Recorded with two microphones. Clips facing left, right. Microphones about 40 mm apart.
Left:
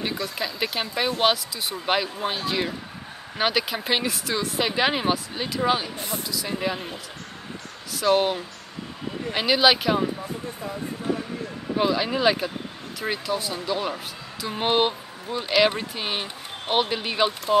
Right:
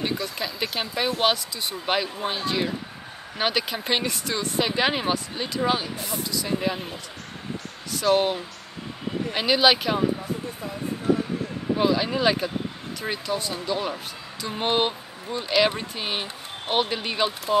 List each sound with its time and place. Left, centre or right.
0.0 s speech: centre
5.9 s speech: left
6.2 s speech: centre
11.7 s speech: centre